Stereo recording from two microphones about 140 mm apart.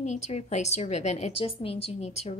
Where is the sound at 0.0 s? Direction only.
50° left (ahead or behind).